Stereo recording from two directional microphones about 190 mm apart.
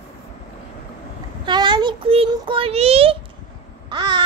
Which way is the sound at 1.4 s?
25° right (ahead or behind).